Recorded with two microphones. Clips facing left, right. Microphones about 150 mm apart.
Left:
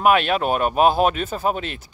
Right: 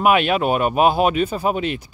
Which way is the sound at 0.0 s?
10° right (ahead or behind).